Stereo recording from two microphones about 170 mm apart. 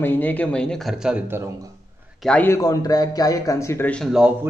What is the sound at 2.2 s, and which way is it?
Speech, 10° left (ahead or behind).